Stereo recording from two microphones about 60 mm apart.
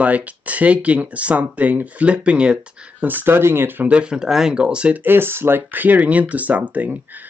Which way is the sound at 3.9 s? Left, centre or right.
Centre.